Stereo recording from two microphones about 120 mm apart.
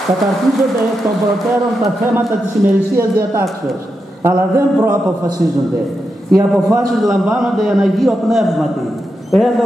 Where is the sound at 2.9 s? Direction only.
20° right (ahead or behind).